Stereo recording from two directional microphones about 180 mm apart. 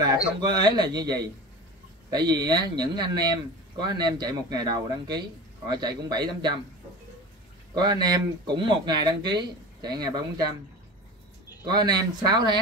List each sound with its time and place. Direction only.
0.0 s a man's voice: 25° right (ahead or behind)
7.7 s a man's voice: 25° right (ahead or behind)
11.6 s a man's voice: 25° right (ahead or behind)